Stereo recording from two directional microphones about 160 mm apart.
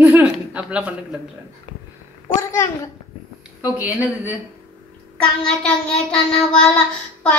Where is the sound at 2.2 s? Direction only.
20° left (ahead or behind).